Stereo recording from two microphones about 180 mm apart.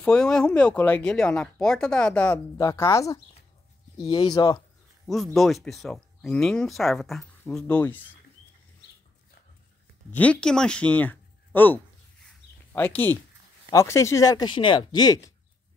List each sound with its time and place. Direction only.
0.0 s speech: 5° left (ahead or behind); by 4.6 s 20° left (ahead or behind)
5.0 s speech: centre (ahead or behind)
10.1 s speech: 5° left (ahead or behind)